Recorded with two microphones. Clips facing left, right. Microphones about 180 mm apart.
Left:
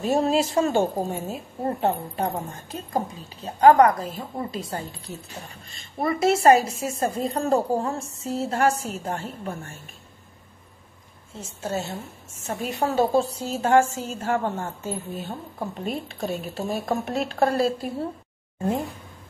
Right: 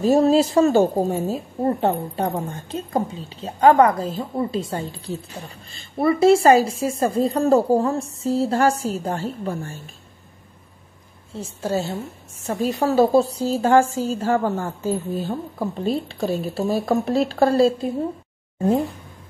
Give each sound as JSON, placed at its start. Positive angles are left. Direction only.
{"t": 0.0, "sound": "a woman's voice", "side_deg": -35}
{"t": 11.3, "sound": "a woman's voice", "side_deg": -35}